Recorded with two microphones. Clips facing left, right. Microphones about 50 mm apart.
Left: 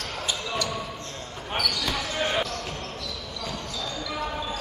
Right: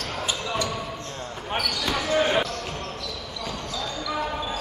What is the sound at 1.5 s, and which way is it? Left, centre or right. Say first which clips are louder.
Basketball bounce: right 1 dB; centre.